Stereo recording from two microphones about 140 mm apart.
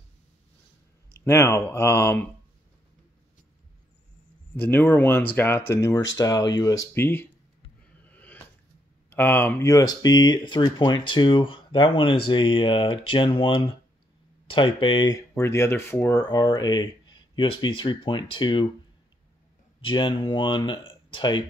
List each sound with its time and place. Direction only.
1.2 s speech: 20° left (ahead or behind)
4.6 s speech: 10° left (ahead or behind)
7.8 s a sound: 10° left (ahead or behind)
9.1 s speech: 15° left (ahead or behind); by 18.7 s 35° left (ahead or behind)
19.8 s speech: 35° left (ahead or behind)